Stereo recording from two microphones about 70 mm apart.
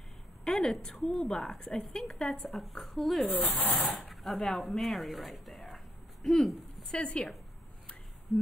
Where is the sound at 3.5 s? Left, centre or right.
Left.